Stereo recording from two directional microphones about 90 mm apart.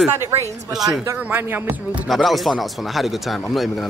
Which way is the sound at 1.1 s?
20° right (ahead or behind).